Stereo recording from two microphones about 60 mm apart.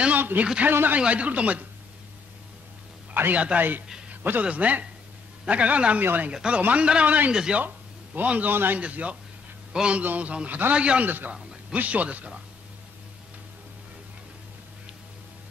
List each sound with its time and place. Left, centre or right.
0.2 s speech: right
0.9 s speech: right
3.3 s a man's voice: right
6.3 s speech: centre
7.6 s speech: right
8.8 s a man's voice: right
11.1 s speech: right